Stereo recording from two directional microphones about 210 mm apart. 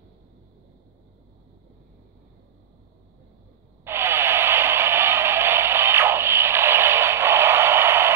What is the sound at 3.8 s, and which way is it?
Radio, 10° right (ahead or behind).